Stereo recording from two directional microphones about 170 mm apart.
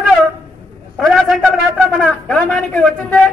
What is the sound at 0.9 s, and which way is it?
A man's voice, centre (ahead or behind).